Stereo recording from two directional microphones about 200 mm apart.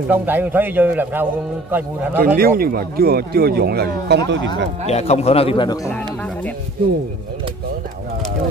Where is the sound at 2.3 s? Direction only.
50° right (ahead or behind).